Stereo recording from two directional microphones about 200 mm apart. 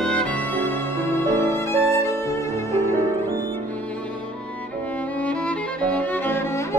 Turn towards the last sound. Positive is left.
turn(degrees=10)  # may be behind; listen again after turning